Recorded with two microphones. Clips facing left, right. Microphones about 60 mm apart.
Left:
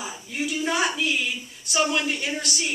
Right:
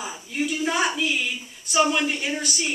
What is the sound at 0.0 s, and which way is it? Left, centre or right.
A woman's voice, centre.